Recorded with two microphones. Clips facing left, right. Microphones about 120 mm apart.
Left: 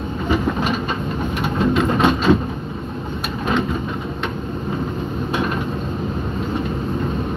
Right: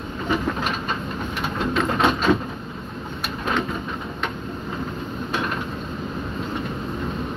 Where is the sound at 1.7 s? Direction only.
5° left (ahead or behind).